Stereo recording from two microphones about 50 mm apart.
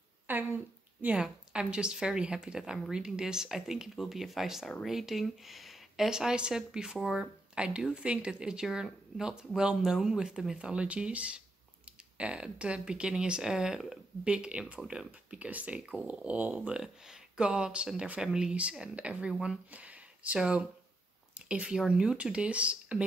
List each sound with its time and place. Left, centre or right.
0.3 s speech: right
1.1 s speech: centre
6.0 s speech: centre
14.2 s speech: right
16.1 s speech: right
16.8 s speech: centre; by 18.2 s right
18.2 s speech: centre
19.7 s a sound: right
20.3 s speech: centre